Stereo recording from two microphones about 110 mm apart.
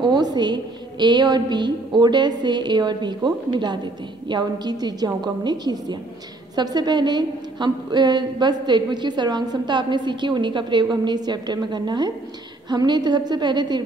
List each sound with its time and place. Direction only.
0.0 s a woman's voice: 40° right (ahead or behind)